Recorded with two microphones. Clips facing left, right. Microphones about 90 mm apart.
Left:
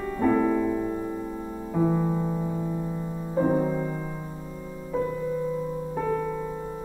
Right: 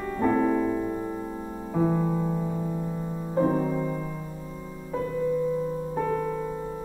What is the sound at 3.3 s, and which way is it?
Music, 10° left (ahead or behind).